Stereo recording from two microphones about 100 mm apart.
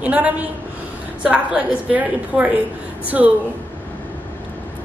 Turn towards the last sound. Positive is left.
turn(degrees=-10)  # may be behind; listen again after turning